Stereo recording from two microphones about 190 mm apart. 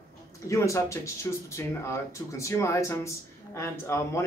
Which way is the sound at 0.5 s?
15° left (ahead or behind).